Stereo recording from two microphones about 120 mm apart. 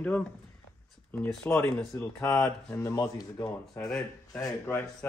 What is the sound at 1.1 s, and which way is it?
Speech, 15° left (ahead or behind).